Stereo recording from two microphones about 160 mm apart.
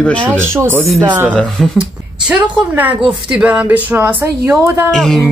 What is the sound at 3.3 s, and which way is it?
Speech, 5° right (ahead or behind).